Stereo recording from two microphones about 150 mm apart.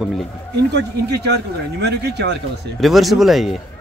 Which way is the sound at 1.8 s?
90° right.